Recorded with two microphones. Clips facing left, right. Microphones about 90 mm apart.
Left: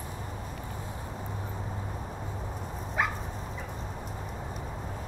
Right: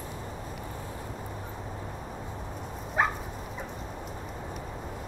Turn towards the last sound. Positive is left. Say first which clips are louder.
# right 3 dB
turn(degrees=-35)  # may be behind; listen again after turning